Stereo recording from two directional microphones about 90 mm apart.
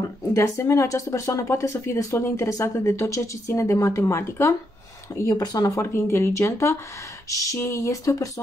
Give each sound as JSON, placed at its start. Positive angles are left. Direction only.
{"t": 0.3, "sound": "speech", "side_deg": 35}
{"t": 5.4, "sound": "speech", "side_deg": 45}
{"t": 5.8, "sound": "speech", "side_deg": 30}